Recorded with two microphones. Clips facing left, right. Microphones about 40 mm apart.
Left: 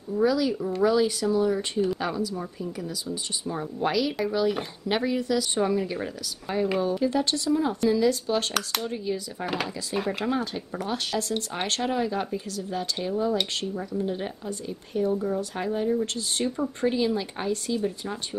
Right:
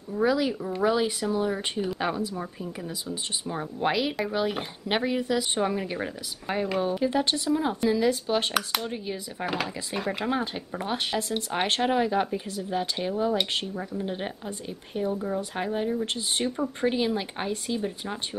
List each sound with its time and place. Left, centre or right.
0.2 s speech: right
0.6 s speech: centre
0.8 s speech: right
9.5 s speech: centre
10.3 s speech: right
16.9 s speech: right